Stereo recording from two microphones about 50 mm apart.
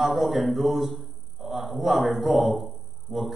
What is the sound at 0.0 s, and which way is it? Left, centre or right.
A man's voice, centre.